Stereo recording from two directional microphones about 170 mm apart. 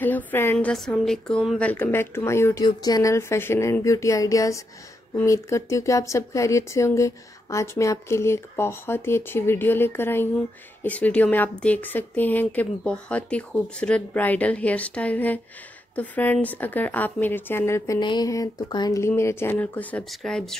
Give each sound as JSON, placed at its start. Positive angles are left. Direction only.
{"t": 0.0, "sound": "speech", "side_deg": 10}
{"t": 1.7, "sound": "speech", "side_deg": 15}